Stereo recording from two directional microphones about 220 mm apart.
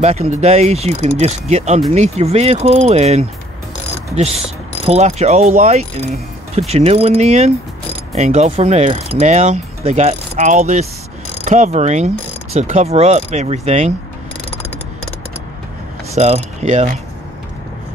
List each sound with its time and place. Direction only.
0.0 s speech: 30° right (ahead or behind)
4.8 s speech: 30° right (ahead or behind)
8.1 s mechanisms: 30° right (ahead or behind)
12.5 s speech: 30° right (ahead or behind)
16.2 s mechanisms: 30° right (ahead or behind)